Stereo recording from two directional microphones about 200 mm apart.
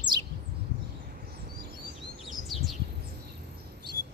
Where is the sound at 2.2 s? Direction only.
Centre (ahead or behind).